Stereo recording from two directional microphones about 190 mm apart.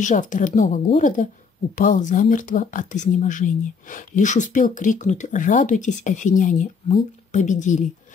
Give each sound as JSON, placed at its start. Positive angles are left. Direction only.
{"t": 0.0, "sound": "speech", "side_deg": 40}